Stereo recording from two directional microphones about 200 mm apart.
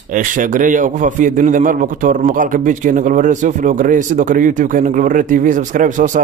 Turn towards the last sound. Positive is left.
turn(degrees=-40)  # may be behind; listen again after turning